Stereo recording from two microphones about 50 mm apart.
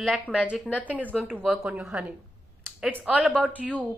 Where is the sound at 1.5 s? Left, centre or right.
Centre.